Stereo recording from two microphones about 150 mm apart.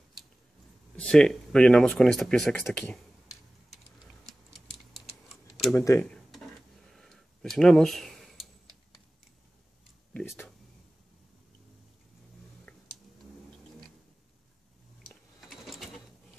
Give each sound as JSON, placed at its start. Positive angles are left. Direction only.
{"t": 0.9, "sound": "speech", "side_deg": 5}
{"t": 5.8, "sound": "speech", "side_deg": 20}
{"t": 6.0, "sound": "a sound", "side_deg": 5}
{"t": 10.1, "sound": "speech", "side_deg": 15}
{"t": 15.0, "sound": "sewing machine", "side_deg": 0}